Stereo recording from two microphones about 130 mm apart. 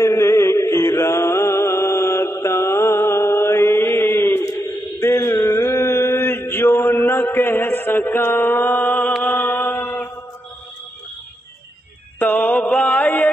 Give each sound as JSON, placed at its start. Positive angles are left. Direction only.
{"t": 0.0, "sound": "music", "side_deg": 25}
{"t": 5.0, "sound": "mantra", "side_deg": 20}
{"t": 12.2, "sound": "mantra", "side_deg": 10}